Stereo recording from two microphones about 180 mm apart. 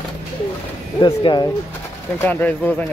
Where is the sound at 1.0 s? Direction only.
25° left (ahead or behind).